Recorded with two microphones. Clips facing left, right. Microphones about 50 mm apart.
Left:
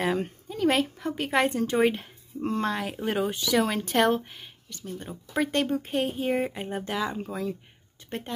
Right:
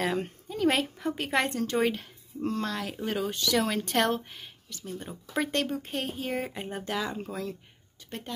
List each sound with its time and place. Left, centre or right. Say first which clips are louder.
0.0 s speech: left 2 dB; centre
1.5 s speech: left 3 dB; centre
8.1 s speech: left 4 dB; left